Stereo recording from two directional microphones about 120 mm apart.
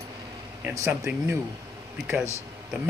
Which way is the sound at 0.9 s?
15° right (ahead or behind).